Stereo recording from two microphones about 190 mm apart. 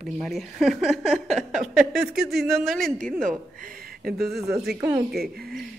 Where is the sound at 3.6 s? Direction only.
50° right (ahead or behind).